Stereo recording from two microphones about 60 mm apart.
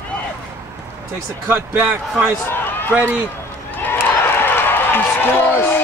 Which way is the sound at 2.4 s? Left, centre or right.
Left.